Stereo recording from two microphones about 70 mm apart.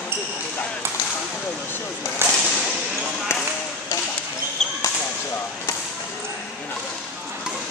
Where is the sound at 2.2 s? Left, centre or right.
Right.